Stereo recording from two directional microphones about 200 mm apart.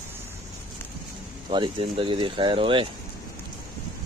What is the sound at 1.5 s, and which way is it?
Speech, 25° right (ahead or behind).